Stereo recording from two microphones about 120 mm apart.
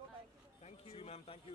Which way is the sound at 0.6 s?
60° left (ahead or behind).